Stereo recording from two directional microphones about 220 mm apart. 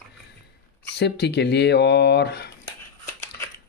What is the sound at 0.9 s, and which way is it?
Speech, 50° left (ahead or behind).